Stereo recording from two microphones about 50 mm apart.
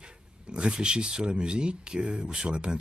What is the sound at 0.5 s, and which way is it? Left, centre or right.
Speech, centre.